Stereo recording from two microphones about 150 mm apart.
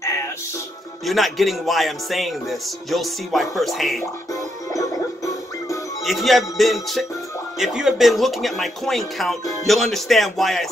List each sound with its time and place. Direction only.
1.0 s speech: centre (ahead or behind)
4.3 s music: 20° left (ahead or behind)
6.0 s speech: centre (ahead or behind)